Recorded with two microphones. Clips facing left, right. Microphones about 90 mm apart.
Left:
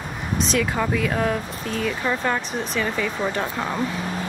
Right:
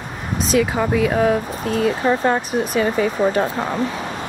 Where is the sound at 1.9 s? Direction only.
30° right (ahead or behind).